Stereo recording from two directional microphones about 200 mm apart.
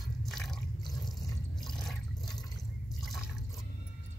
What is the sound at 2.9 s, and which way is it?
Liquid, centre (ahead or behind).